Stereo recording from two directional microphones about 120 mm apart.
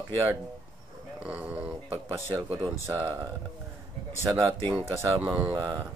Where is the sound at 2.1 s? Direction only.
20° right (ahead or behind).